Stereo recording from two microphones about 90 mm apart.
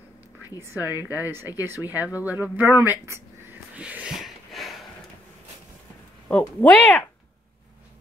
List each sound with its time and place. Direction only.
0.6 s speech: 25° right (ahead or behind)
3.7 s a sound: 15° right (ahead or behind)
6.2 s speech: 20° left (ahead or behind)